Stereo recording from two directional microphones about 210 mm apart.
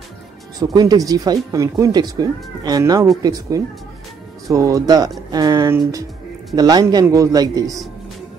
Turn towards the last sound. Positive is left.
turn(degrees=-15)  # may be behind; listen again after turning